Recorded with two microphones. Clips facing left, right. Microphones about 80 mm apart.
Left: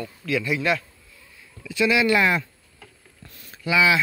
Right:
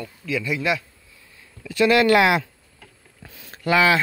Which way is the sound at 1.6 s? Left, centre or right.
Right.